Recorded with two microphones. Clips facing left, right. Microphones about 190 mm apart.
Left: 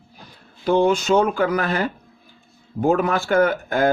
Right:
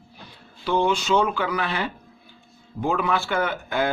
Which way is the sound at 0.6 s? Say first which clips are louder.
Left 5 dB; 45° left (ahead or behind).